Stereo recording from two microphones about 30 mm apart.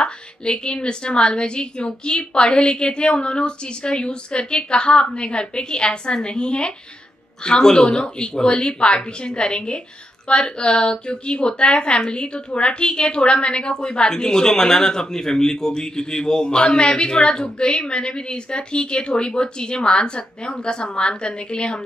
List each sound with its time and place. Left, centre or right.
0.0 s a woman's voice: left